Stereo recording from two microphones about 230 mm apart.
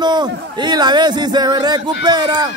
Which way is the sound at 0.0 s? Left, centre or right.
Centre.